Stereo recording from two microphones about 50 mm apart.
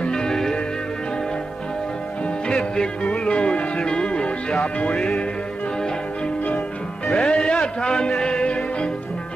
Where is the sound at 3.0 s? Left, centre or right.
Left.